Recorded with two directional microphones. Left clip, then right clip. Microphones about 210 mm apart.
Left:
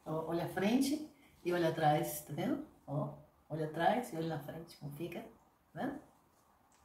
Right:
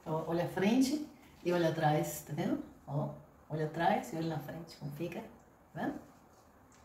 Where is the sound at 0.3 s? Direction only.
20° left (ahead or behind).